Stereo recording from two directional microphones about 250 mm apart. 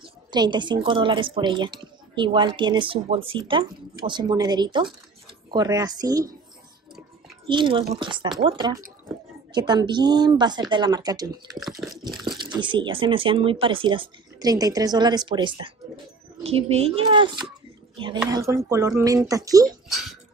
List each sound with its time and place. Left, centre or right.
0.0 s a woman's voice: centre
7.4 s a woman's voice: centre